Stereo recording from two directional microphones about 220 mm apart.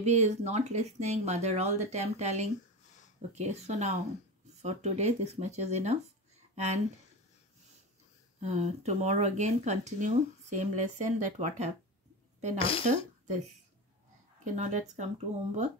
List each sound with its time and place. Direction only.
0.0 s speech: 30° right (ahead or behind)
8.4 s speech: 30° right (ahead or behind)
12.5 s speech: 25° left (ahead or behind)
14.4 s speech: 35° right (ahead or behind)